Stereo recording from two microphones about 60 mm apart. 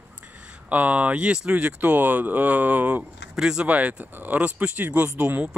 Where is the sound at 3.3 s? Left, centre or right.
Centre.